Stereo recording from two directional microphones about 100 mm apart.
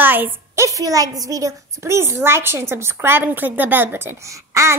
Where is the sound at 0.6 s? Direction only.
35° right (ahead or behind).